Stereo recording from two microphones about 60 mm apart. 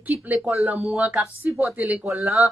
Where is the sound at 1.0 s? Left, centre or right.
Right.